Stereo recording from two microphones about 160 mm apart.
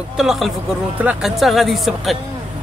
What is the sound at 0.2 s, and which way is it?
Speech, centre (ahead or behind).